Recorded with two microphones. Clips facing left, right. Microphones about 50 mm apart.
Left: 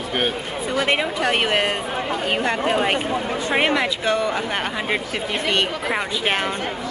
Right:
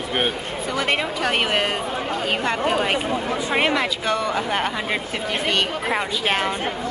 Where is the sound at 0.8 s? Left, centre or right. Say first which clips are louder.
Left 2 dB; centre.